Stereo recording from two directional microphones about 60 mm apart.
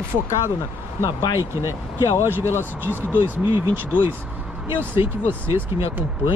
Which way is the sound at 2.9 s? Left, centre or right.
Left.